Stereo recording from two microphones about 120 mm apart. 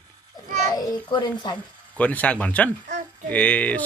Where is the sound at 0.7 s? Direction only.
30° left (ahead or behind).